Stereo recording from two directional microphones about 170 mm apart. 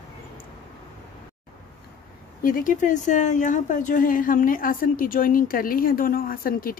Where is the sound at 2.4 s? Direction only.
50° left (ahead or behind).